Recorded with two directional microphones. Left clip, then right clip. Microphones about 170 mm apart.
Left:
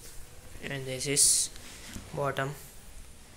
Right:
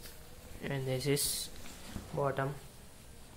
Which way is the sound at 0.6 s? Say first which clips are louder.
Left 1 dB; 15° right (ahead or behind).